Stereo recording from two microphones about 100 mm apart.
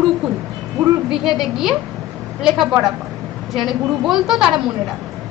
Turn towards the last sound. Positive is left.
turn(degrees=-5)  # may be behind; listen again after turning